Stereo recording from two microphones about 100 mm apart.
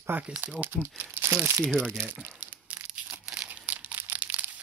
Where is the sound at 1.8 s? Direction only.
20° right (ahead or behind).